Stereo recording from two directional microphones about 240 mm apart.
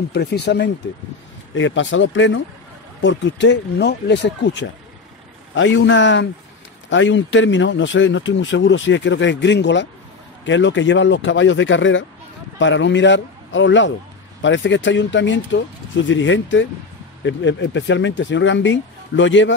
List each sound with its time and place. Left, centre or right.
0.1 s a man's voice: left